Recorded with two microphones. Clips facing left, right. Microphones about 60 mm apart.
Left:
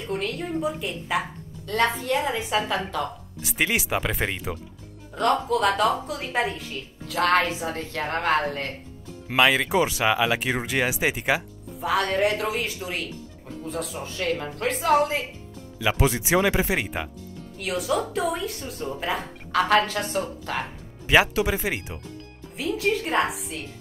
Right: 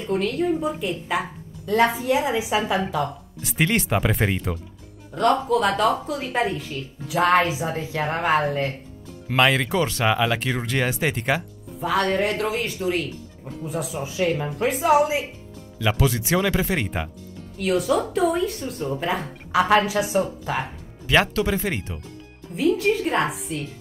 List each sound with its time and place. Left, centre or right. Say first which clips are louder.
0.0 s a woman's voice: right 6 dB; centre
16.0 s a woman's voice: left 1 dB; centre
21.1 s a woman's voice: even; centre